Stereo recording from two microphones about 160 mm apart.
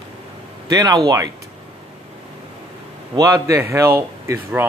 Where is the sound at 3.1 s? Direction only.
20° right (ahead or behind).